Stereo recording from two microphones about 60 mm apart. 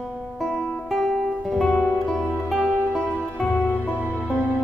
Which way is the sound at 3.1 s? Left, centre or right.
Centre.